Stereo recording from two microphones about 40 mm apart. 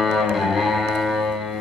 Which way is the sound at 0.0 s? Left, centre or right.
Centre.